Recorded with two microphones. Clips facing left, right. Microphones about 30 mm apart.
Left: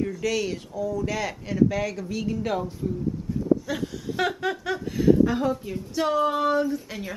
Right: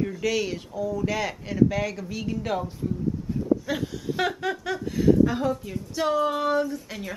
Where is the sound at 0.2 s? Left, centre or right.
Centre.